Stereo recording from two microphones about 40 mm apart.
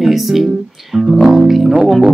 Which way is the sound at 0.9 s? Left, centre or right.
Centre.